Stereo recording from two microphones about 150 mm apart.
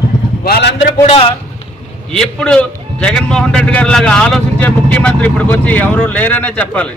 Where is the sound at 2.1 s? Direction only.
5° left (ahead or behind).